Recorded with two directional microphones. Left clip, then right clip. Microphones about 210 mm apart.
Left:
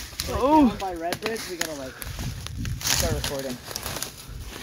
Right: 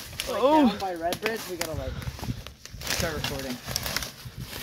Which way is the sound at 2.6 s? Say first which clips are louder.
Left 4 dB; 55° left (ahead or behind).